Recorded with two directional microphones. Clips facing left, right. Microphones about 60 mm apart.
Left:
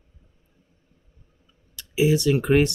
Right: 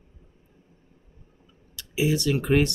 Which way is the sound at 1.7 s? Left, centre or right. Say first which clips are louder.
Left 4 dB; left.